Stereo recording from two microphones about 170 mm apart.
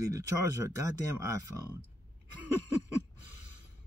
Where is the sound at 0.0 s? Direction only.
20° right (ahead or behind).